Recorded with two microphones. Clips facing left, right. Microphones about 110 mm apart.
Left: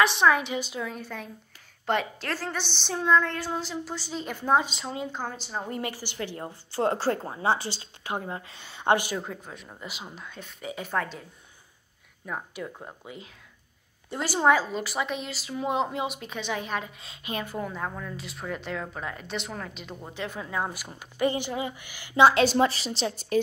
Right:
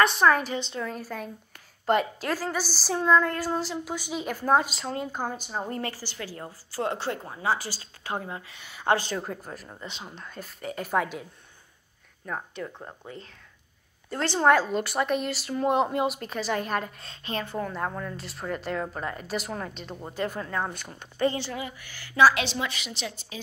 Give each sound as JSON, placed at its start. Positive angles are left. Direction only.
{"t": 0.0, "sound": "a woman's voice", "side_deg": 0}
{"t": 5.1, "sound": "speech", "side_deg": -10}
{"t": 5.7, "sound": "a woman's voice", "side_deg": 15}
{"t": 8.3, "sound": "a woman's voice", "side_deg": 30}
{"t": 9.2, "sound": "a woman's voice", "side_deg": -5}
{"t": 10.9, "sound": "speech", "side_deg": -10}
{"t": 12.3, "sound": "a woman's voice", "side_deg": 5}
{"t": 17.7, "sound": "a woman's voice", "side_deg": -5}
{"t": 20.4, "sound": "a woman's voice", "side_deg": 10}
{"t": 22.3, "sound": "a woman's voice", "side_deg": 40}